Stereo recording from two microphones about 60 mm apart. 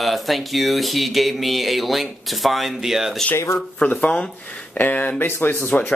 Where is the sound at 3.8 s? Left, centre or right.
Left.